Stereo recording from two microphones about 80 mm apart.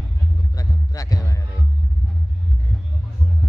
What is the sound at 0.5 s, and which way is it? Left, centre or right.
Music, left.